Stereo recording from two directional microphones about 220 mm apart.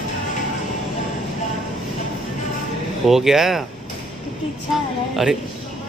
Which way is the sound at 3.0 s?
Centre (ahead or behind).